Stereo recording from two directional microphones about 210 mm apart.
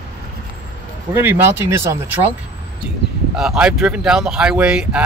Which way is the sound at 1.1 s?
10° right (ahead or behind).